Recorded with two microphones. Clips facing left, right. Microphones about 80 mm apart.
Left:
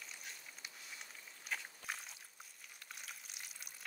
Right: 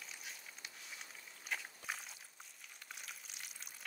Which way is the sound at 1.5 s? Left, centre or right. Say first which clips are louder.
Right 1 dB; centre.